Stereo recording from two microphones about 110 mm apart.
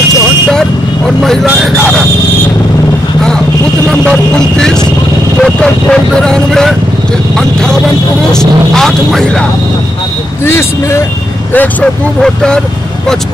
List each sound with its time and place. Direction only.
0.5 s speech: 5° left (ahead or behind)
3.9 s vehicle: 5° left (ahead or behind)
5.4 s speech: 5° left (ahead or behind)
8.3 s speech: 5° left (ahead or behind)
10.4 s speech: 20° left (ahead or behind)
11.5 s speech: 10° left (ahead or behind)